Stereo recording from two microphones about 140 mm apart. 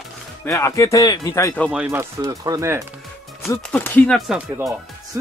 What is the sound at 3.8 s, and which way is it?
Speech, 10° left (ahead or behind).